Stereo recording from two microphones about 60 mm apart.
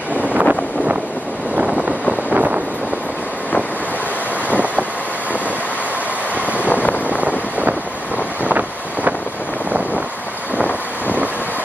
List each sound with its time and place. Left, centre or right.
0.2 s vehicle: right
1.9 s vehicle: centre
4.5 s vehicle: right
6.3 s vehicle: right
6.7 s vehicle: left
7.2 s vehicle: right